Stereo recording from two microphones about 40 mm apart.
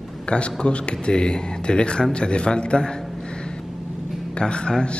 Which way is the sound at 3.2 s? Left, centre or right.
Left.